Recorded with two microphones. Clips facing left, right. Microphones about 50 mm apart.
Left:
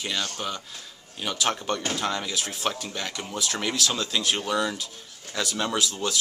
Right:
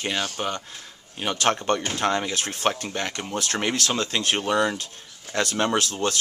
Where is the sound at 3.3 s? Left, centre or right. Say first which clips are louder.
Right 3 dB; right.